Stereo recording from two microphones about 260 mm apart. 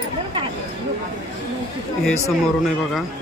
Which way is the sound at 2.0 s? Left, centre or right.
Centre.